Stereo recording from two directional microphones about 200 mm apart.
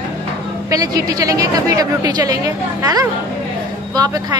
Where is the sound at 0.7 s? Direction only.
15° right (ahead or behind).